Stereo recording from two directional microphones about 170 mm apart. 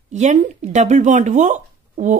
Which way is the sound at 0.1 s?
45° right (ahead or behind).